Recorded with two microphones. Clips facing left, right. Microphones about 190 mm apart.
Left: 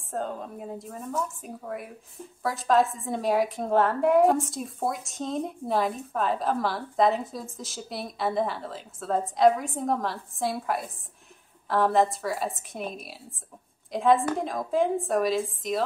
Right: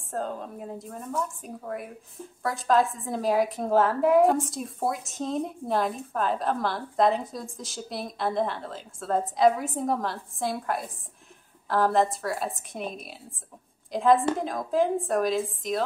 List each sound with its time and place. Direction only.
0.1 s a woman's voice: centre (ahead or behind)